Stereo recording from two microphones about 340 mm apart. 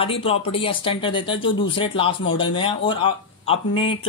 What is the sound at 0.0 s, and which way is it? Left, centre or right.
Speech, centre.